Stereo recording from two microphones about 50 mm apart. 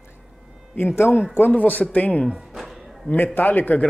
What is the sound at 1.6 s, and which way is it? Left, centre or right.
Speech, left.